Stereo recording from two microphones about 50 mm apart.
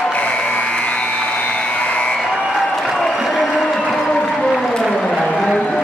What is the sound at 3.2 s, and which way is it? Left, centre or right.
Applause, centre.